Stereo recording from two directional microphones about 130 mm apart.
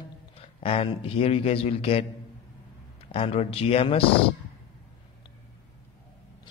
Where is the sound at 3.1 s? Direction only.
50° left (ahead or behind).